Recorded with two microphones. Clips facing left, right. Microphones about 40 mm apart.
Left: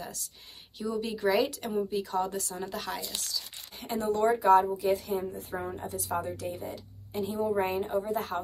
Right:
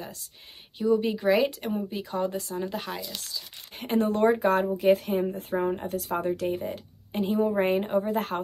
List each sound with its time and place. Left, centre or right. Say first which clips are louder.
0.7 s speech: right 8 dB; right
3.7 s a woman's voice: right 4 dB; right